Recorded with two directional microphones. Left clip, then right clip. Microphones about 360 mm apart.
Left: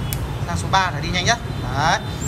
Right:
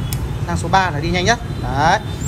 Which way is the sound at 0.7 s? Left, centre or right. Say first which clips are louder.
Right 3 dB; centre.